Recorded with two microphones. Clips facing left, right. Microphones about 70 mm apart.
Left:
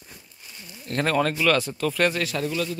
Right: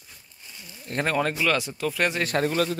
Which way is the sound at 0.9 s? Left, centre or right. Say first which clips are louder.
Left 2 dB; centre.